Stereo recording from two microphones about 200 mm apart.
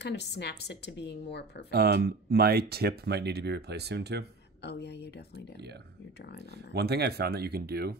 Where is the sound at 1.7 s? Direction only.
50° right (ahead or behind).